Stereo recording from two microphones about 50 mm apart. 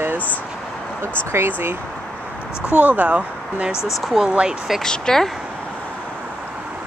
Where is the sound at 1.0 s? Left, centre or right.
Right.